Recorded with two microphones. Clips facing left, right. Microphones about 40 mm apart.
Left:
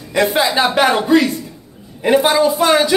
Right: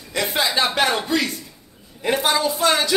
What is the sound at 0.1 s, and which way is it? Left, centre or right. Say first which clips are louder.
A woman's voice: left 7 dB; centre.